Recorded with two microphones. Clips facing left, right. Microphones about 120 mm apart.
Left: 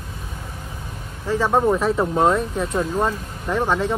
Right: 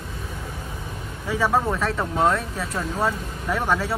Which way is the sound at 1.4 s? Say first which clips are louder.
Left 4 dB; 20° left (ahead or behind).